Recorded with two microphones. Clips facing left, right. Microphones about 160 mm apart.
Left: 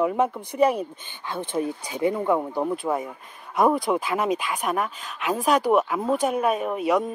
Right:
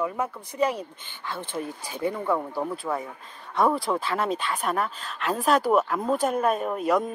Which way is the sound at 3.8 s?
5° left (ahead or behind).